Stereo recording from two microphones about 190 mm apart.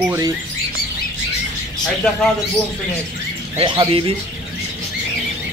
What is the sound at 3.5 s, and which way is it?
Speech, 25° right (ahead or behind).